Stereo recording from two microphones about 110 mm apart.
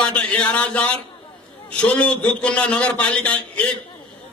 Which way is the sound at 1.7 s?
10° left (ahead or behind).